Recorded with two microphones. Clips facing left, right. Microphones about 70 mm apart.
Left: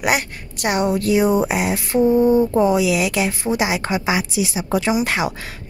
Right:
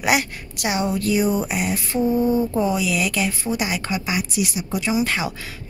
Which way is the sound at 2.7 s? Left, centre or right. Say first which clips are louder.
Left 5 dB; left.